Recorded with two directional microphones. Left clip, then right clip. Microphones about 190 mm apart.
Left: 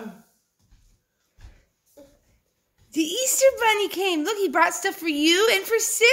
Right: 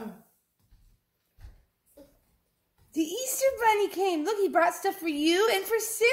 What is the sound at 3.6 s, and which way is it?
Speech, 65° left (ahead or behind).